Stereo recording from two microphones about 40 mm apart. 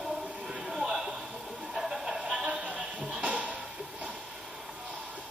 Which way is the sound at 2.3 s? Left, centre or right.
Right.